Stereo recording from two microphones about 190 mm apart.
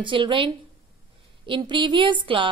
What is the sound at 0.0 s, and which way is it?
A woman's voice, 25° right (ahead or behind).